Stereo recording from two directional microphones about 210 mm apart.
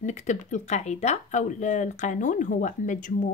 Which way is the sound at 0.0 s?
35° left (ahead or behind).